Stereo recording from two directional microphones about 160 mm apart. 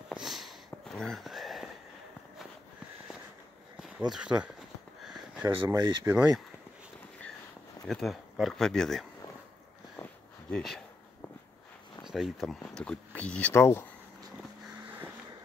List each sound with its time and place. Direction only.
0.1 s sniff: centre (ahead or behind)
4.1 s a sound: 5° right (ahead or behind)
5.7 s speech: 20° right (ahead or behind)
6.1 s speech: 5° right (ahead or behind)
7.8 s speech: centre (ahead or behind)
10.5 s speech: centre (ahead or behind)
12.0 s speech: centre (ahead or behind); by 13.8 s 15° left (ahead or behind)